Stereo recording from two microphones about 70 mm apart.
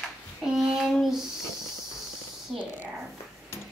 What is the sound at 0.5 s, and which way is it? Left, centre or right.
Speech, centre.